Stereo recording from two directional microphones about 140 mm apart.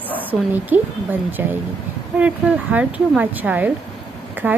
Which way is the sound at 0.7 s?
15° right (ahead or behind).